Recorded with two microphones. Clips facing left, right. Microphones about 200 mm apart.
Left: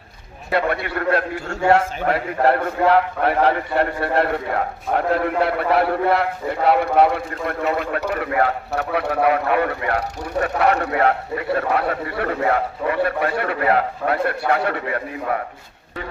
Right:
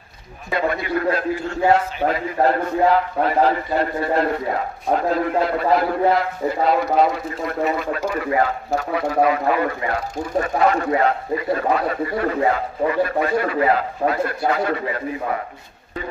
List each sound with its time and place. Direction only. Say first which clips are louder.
0.5 s a man's voice: even; 65° left (ahead or behind)